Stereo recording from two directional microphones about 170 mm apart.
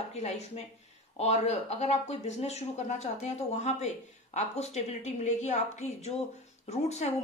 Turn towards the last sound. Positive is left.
turn(degrees=40)  # may be behind; listen again after turning